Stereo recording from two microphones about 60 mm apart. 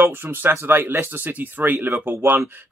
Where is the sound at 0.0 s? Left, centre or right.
Right.